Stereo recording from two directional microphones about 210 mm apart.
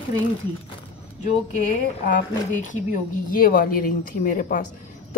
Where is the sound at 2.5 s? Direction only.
40° left (ahead or behind).